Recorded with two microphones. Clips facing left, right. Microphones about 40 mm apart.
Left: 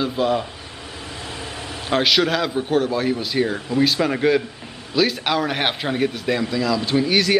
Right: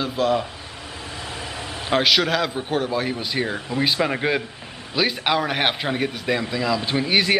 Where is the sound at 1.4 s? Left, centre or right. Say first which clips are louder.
Even; right.